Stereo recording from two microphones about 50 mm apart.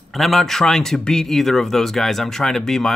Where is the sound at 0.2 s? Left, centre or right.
Centre.